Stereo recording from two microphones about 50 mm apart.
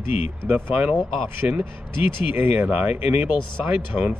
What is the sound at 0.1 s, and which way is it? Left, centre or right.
Speech, right.